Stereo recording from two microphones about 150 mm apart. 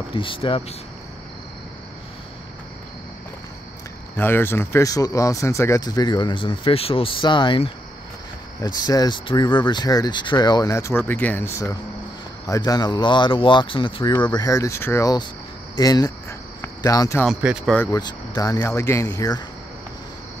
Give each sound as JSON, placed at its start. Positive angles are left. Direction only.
{"t": 0.1, "sound": "speech", "side_deg": 35}
{"t": 4.2, "sound": "speech", "side_deg": 15}
{"t": 8.6, "sound": "speech", "side_deg": 25}
{"t": 15.7, "sound": "cricket", "side_deg": 25}
{"t": 17.3, "sound": "speech", "side_deg": -5}
{"t": 17.9, "sound": "speech", "side_deg": 25}